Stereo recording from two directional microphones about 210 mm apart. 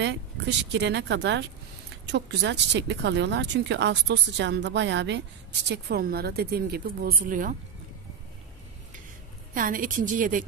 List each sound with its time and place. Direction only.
0.0 s a woman's voice: 55° right (ahead or behind); by 7.5 s 40° right (ahead or behind)
9.5 s a woman's voice: 40° right (ahead or behind)